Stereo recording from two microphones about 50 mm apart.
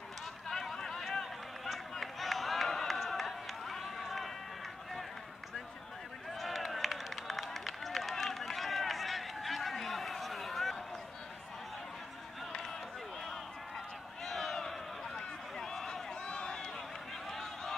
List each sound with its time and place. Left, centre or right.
0.5 s run: centre
6.4 s run: centre
14.2 s run: centre
17.3 s a sound: centre